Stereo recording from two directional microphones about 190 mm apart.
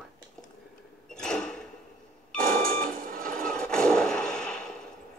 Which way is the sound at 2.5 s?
50° right (ahead or behind).